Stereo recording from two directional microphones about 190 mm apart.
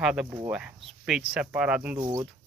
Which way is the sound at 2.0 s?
20° right (ahead or behind).